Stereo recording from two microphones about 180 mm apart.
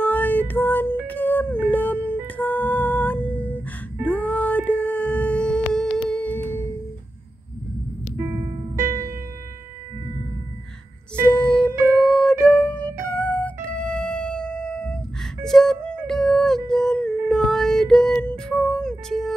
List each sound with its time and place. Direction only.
0.0 s music: 10° left (ahead or behind)
8.2 s music: 15° right (ahead or behind)
11.2 s music: 5° left (ahead or behind)